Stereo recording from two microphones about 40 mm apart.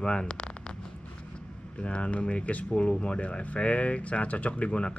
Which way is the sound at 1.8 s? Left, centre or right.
Left.